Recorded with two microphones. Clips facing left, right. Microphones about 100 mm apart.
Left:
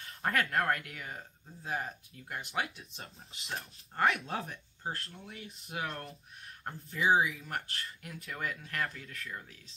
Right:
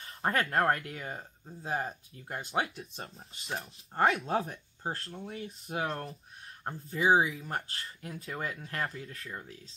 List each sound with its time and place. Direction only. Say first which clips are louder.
0.0 s speech: right 2 dB; 30° right (ahead or behind)